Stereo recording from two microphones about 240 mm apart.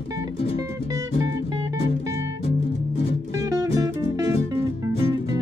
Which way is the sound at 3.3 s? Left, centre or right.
Centre.